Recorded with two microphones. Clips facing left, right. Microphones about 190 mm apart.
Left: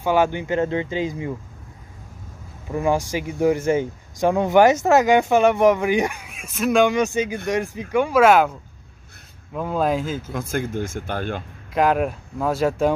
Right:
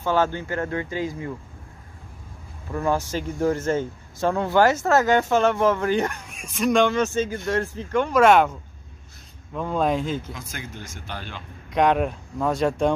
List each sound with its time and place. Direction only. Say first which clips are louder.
0.0 s speech: left 3 dB; 15° left (ahead or behind)
2.7 s speech: left 3 dB; 15° left (ahead or behind)
10.3 s speech: left 12 dB; 55° left (ahead or behind)
11.7 s speech: left 1 dB; 5° left (ahead or behind)